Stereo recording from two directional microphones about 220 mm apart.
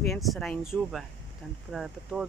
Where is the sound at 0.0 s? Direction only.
Centre (ahead or behind).